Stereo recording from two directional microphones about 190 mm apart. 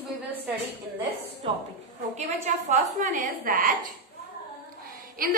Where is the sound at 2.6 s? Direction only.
40° right (ahead or behind).